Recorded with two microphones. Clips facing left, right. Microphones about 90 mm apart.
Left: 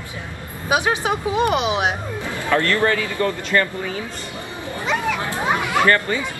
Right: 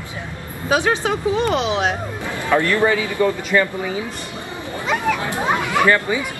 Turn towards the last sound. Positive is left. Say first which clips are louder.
# right 1 dB
turn(degrees=-15)  # may be behind; listen again after turning